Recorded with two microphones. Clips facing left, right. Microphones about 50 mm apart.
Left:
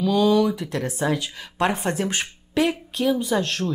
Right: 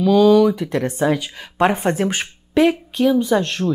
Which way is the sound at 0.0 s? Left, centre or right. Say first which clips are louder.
Right 6 dB; centre.